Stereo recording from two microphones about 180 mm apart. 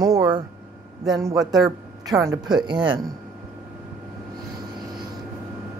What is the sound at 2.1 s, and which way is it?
Speech, 20° right (ahead or behind).